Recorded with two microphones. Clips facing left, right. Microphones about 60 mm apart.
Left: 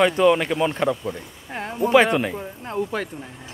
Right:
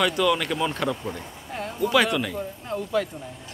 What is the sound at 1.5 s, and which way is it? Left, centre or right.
Speech, left.